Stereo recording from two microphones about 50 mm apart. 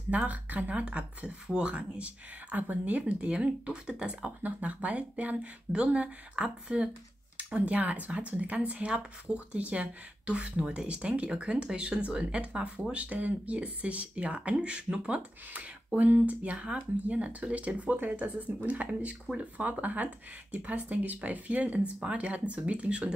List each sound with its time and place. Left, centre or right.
0.1 s speech: right
4.4 s speech: right
16.0 s speech: right